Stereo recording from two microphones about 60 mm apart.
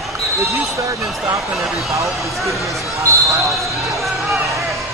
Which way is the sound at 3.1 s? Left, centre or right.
Right.